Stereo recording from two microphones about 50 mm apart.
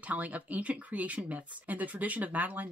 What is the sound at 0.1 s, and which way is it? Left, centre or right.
Speech, right.